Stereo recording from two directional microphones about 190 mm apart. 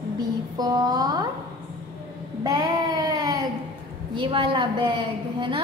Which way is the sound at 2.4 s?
20° right (ahead or behind).